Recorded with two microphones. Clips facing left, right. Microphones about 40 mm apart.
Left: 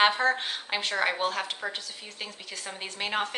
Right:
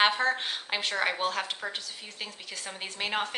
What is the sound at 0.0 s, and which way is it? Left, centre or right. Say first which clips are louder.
A woman's voice: left 2 dB; centre.